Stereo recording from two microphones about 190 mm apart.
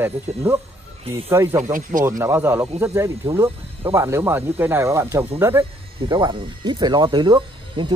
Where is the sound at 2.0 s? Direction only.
15° right (ahead or behind).